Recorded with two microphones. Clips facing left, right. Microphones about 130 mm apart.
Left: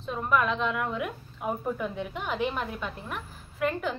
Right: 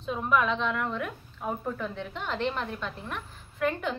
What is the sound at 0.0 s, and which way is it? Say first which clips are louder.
A woman's voice: even; centre (ahead or behind).